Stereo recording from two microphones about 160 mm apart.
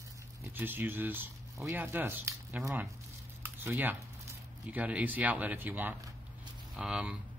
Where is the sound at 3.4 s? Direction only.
10° right (ahead or behind).